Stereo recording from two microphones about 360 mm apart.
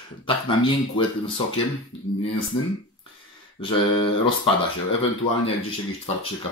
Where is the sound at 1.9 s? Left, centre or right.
Left.